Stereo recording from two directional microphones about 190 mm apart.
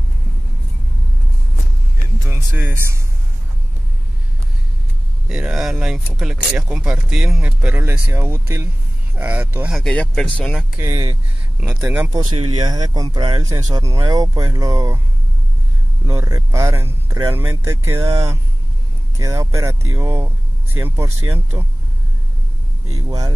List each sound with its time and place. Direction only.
2.2 s speech: 10° right (ahead or behind)
5.3 s speech: 5° right (ahead or behind)
9.8 s speech: 5° left (ahead or behind)
10.8 s speech: 15° right (ahead or behind)
12.1 s speech: 25° right (ahead or behind)
16.1 s speech: 20° right (ahead or behind)
23.0 s speech: 20° right (ahead or behind)